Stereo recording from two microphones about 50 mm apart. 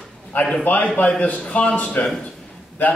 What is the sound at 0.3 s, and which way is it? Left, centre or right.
A man's voice, left.